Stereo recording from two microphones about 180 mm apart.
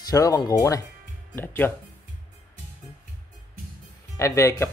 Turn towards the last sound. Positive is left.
turn(degrees=15)  # may be behind; listen again after turning